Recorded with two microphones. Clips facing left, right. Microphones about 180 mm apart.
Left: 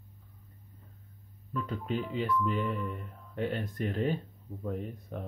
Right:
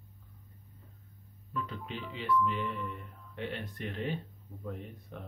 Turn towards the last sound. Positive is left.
turn(degrees=40)  # may be behind; listen again after turning